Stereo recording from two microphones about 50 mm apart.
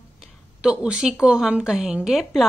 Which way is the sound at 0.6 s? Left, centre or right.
Centre.